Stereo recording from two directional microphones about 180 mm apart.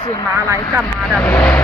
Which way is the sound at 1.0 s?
5° left (ahead or behind).